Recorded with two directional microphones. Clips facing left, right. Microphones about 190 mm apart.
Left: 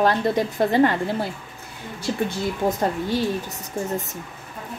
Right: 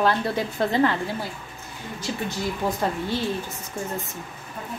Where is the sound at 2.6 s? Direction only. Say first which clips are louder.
Left 3 dB; 15° left (ahead or behind).